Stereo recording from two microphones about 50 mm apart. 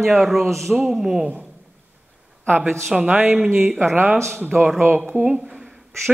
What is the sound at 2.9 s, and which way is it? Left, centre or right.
Speech, right.